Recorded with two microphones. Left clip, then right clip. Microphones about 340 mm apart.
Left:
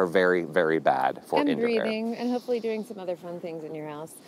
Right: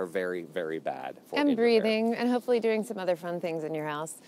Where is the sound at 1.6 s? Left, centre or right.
Right.